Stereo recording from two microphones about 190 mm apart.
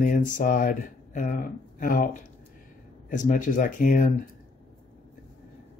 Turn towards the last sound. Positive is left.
turn(degrees=45)  # may be behind; listen again after turning